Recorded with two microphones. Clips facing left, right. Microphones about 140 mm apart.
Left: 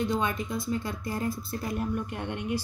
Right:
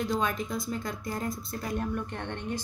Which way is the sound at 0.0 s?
Centre (ahead or behind).